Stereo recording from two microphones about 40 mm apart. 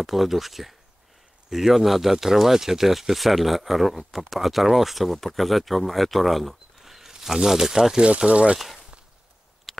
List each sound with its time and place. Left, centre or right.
0.0 s speech: centre
8.3 s speech: right
8.5 s a sound: centre